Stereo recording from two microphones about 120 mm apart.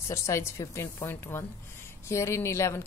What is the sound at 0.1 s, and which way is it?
A woman's voice, 25° left (ahead or behind).